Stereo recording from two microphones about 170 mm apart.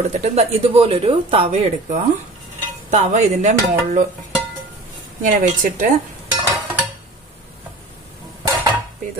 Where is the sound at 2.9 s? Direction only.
45° right (ahead or behind).